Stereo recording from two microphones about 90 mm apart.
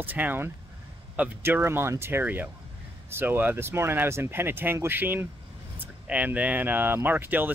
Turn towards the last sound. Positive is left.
turn(degrees=-20)  # may be behind; listen again after turning